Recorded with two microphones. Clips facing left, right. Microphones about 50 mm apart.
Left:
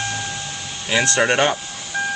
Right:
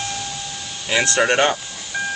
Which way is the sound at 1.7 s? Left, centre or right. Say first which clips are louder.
Left 1 dB; centre.